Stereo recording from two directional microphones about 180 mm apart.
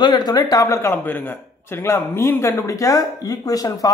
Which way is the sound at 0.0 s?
20° left (ahead or behind).